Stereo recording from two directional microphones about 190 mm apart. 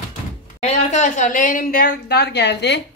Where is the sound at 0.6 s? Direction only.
35° left (ahead or behind); by 2.8 s 65° left (ahead or behind).